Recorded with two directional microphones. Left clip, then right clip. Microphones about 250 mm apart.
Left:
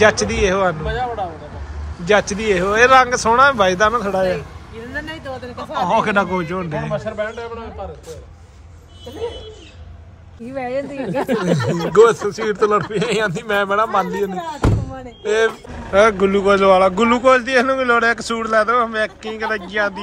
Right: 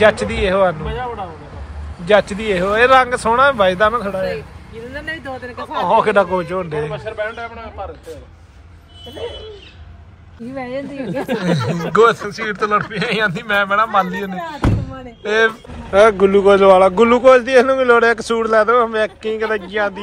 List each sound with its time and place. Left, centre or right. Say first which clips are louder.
0.0 s speech: right 1 dB; centre
2.0 s speech: right 1 dB; centre
5.9 s speech: right 4 dB; centre
6.9 s a man's voice: left 1 dB; right
10.5 s speech: left 2 dB; centre